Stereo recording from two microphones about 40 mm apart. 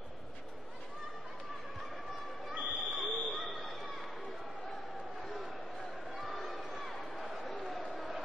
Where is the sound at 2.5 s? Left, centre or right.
Right.